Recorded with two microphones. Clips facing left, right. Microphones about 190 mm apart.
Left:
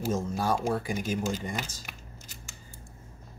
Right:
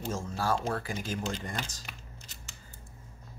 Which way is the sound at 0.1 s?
20° left (ahead or behind).